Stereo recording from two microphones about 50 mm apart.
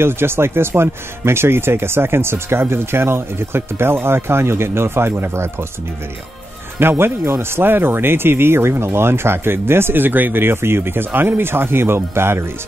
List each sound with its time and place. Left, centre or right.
0.0 s speech: right
6.8 s speech: right